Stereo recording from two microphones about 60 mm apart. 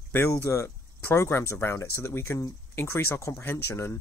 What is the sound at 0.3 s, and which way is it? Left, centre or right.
Speech, left.